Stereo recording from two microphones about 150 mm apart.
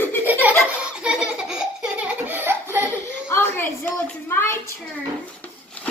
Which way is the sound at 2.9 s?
15° left (ahead or behind).